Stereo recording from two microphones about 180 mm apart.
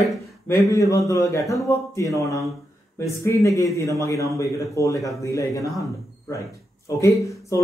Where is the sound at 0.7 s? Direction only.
20° left (ahead or behind).